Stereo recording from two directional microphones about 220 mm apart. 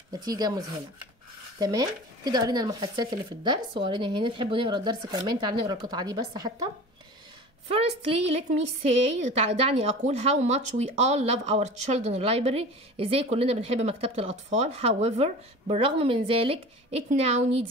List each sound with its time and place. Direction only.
0.1 s a woman's voice: 15° right (ahead or behind)
7.7 s a woman's voice: 25° right (ahead or behind)